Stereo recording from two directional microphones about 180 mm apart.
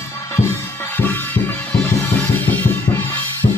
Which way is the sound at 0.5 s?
10° left (ahead or behind).